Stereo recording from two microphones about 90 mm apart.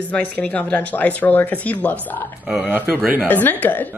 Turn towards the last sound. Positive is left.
turn(degrees=20)  # may be behind; listen again after turning